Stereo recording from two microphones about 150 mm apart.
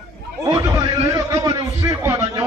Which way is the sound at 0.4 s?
25° right (ahead or behind).